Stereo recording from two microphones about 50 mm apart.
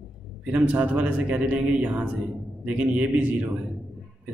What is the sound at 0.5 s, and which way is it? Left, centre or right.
A man's voice, right.